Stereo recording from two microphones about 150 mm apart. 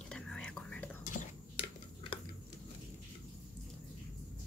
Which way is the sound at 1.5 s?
35° left (ahead or behind).